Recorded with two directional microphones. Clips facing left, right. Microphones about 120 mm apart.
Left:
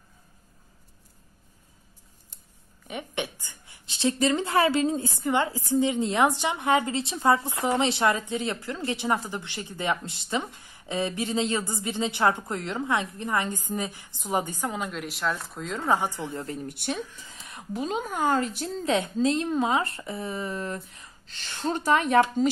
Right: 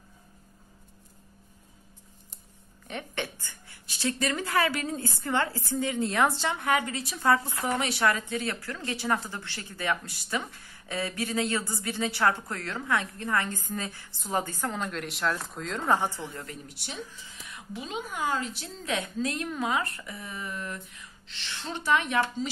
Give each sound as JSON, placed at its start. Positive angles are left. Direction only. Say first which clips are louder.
{"t": 2.9, "sound": "speech", "louder": "left 2 dB", "side_deg": 15}
{"t": 16.6, "sound": "speech", "louder": "left 8 dB", "side_deg": 55}
{"t": 18.9, "sound": "a woman's voice", "louder": "left 6 dB", "side_deg": 30}